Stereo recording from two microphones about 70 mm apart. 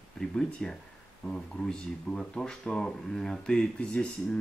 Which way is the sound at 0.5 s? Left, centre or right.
Centre.